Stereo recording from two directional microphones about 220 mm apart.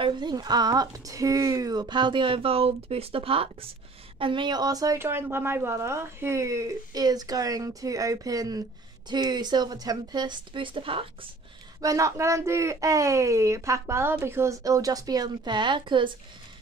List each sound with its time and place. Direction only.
0.0 s a woman's voice: 20° right (ahead or behind)